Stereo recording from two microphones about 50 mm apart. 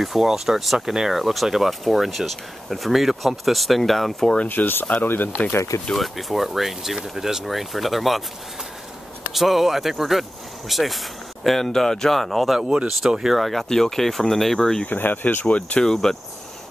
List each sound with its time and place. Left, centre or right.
0.0 s speech: centre
4.5 s speech: left
5.9 s speech: centre
9.3 s speech: centre
12.5 s speech: centre
13.4 s speech: centre
14.9 s speech: left
15.8 s speech: centre